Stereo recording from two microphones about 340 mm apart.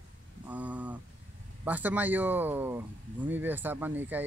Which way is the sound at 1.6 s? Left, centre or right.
Centre.